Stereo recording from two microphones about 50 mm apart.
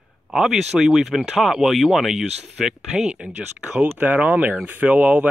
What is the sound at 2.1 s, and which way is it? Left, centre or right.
Speech, centre.